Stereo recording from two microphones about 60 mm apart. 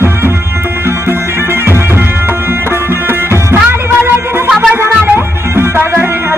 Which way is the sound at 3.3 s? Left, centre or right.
Right.